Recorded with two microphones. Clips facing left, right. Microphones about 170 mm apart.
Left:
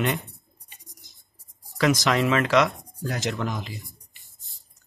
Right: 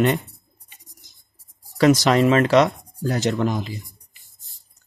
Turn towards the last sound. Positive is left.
turn(degrees=0)  # may be behind; listen again after turning